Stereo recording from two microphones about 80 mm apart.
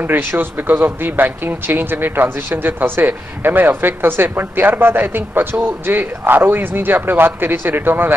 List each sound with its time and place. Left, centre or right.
0.0 s speech: right